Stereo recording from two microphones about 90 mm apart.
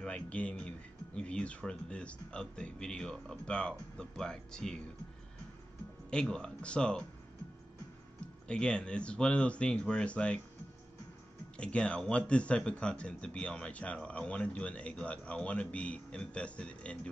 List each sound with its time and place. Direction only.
0.0 s speech: 15° left (ahead or behind)
6.3 s speech: 10° left (ahead or behind)
8.5 s speech: 10° left (ahead or behind)
11.5 s speech: 10° left (ahead or behind)